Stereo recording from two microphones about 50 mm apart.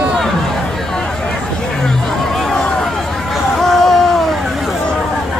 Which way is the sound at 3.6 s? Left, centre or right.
Centre.